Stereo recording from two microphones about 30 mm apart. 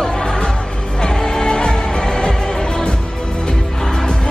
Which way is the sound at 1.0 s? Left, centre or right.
Left.